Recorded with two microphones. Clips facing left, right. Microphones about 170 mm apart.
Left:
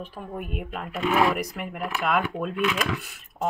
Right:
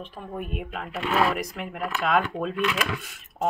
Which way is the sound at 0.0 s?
5° left (ahead or behind).